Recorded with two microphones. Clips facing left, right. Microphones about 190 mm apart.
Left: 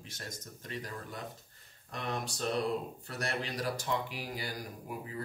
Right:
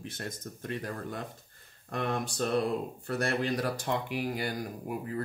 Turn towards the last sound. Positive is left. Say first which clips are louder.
# right 6 dB
turn(degrees=-55)  # may be behind; listen again after turning